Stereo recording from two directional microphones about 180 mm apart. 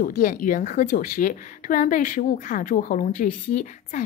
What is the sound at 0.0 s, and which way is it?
A woman's voice, 50° left (ahead or behind).